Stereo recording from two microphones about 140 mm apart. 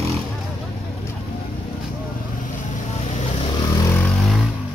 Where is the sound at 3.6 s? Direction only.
20° left (ahead or behind).